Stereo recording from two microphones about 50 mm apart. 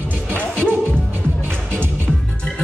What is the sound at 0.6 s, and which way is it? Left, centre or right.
Music, right.